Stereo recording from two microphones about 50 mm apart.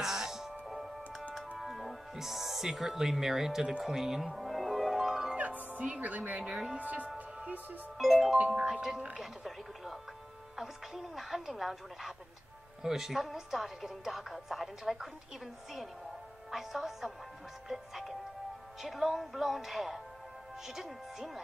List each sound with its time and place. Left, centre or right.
0.0 s music: centre
1.6 s speech: centre
4.4 s music: centre
5.6 s a woman's voice: right
6.5 s speech: centre
6.8 s speech: right
8.0 s speech: centre
16.4 s speech: centre